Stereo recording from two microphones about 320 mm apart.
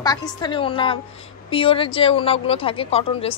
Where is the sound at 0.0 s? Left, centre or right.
Centre.